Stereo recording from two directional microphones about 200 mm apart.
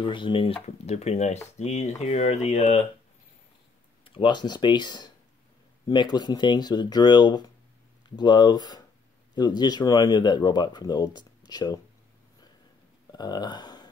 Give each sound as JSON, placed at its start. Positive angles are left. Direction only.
{"t": 0.0, "sound": "speech", "side_deg": 25}
{"t": 4.0, "sound": "speech", "side_deg": 25}
{"t": 13.1, "sound": "speech", "side_deg": 20}